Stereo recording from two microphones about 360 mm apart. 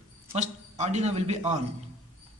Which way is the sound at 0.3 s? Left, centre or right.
Centre.